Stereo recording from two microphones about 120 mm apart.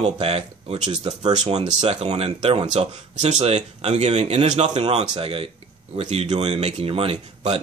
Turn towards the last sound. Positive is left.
turn(degrees=-60)  # may be behind; listen again after turning